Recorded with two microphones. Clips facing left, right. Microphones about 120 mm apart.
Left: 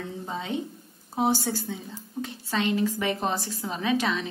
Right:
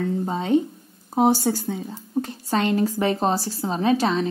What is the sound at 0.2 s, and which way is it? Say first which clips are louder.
A woman's voice: right 9 dB; 40° right (ahead or behind).